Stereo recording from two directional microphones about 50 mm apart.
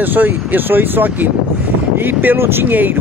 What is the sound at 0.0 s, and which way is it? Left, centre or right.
Speech, right.